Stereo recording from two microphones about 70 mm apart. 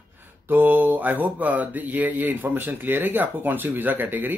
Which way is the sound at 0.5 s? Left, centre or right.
Right.